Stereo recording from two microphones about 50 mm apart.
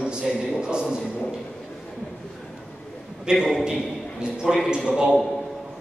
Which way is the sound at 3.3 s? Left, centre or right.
Centre.